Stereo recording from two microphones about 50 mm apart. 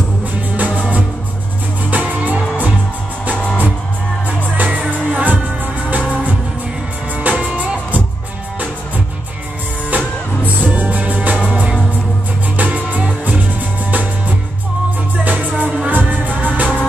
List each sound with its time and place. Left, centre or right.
0.6 s music: right
4.6 s music: right
9.8 s music: right
15.2 s music: right